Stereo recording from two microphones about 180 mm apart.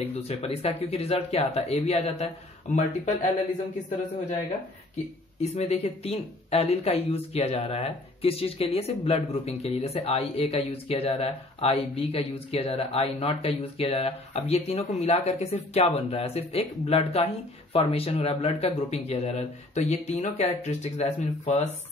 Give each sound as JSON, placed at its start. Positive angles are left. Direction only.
{"t": 0.0, "sound": "speech", "side_deg": 35}
{"t": 5.4, "sound": "speech", "side_deg": 35}